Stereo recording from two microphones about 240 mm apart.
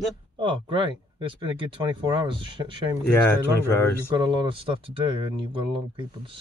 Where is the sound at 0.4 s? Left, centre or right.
Right.